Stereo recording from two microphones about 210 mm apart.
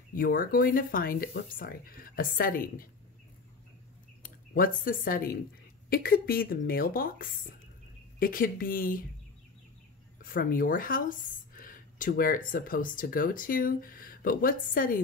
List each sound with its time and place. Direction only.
0.1 s speech: 45° left (ahead or behind)
4.2 s speech: 40° left (ahead or behind)
10.2 s speech: 40° left (ahead or behind)